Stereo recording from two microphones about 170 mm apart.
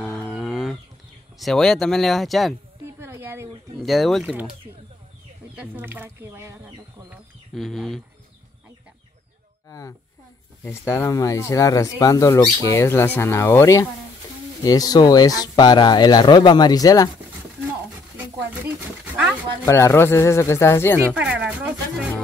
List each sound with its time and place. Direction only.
0.2 s chicken: centre (ahead or behind)
1.4 s speech: 5° left (ahead or behind)
3.0 s a sound: 15° right (ahead or behind)
3.7 s speech: centre (ahead or behind)
5.6 s speech: 10° right (ahead or behind)
7.5 s speech: centre (ahead or behind)
9.7 s speech: 20° left (ahead or behind)
19.6 s speech: 15° left (ahead or behind)
21.1 s a sound: 10° right (ahead or behind)